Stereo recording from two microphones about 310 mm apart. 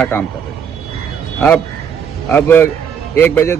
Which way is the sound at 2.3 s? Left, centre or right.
Centre.